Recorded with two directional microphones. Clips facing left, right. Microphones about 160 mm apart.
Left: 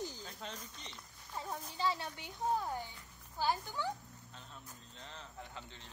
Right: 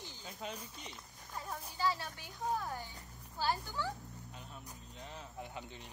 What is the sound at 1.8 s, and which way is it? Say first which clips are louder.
A child's voice: right 1 dB; 20° left (ahead or behind).